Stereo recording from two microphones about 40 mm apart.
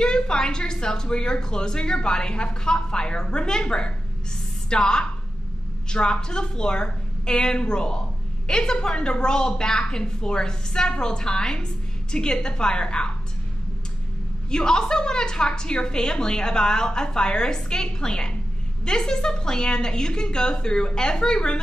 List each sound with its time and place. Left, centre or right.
0.0 s a woman's voice: centre
14.5 s a woman's voice: centre